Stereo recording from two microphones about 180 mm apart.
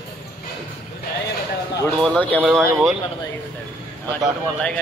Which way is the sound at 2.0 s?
5° left (ahead or behind).